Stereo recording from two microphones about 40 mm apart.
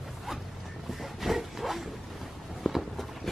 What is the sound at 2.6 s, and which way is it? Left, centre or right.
Walk, centre.